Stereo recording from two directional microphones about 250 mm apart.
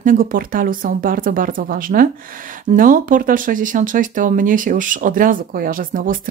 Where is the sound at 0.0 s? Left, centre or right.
Right.